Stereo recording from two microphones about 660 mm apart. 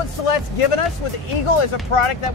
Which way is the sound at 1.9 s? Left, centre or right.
Left.